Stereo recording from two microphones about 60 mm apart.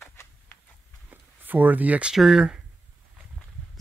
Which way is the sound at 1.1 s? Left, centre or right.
Right.